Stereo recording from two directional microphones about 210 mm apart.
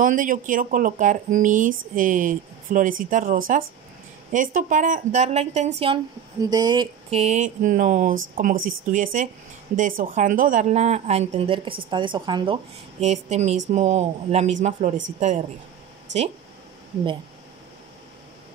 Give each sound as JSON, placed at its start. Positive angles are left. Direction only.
{"t": 0.0, "sound": "speech", "side_deg": -40}
{"t": 6.4, "sound": "speech", "side_deg": -20}
{"t": 7.2, "sound": "speech", "side_deg": -35}
{"t": 13.0, "sound": "speech", "side_deg": -30}
{"t": 16.1, "sound": "speech", "side_deg": -60}